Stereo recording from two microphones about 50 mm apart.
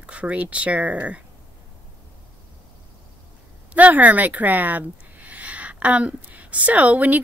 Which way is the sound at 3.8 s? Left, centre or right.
Right.